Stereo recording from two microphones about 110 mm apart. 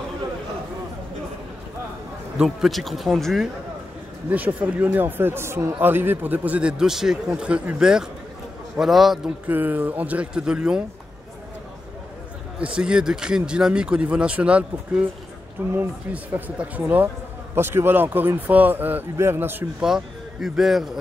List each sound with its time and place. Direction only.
2.3 s speech: 5° right (ahead or behind)
4.3 s speech: 15° right (ahead or behind)
9.5 s speech: 15° right (ahead or behind)
12.5 s a man's voice: 10° right (ahead or behind)
19.8 s speech: 5° right (ahead or behind)